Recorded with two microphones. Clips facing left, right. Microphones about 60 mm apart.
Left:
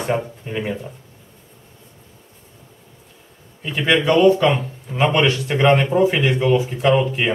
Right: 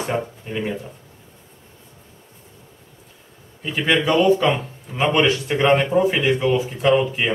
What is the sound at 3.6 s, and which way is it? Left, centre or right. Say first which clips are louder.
Speech: left 2 dB; centre.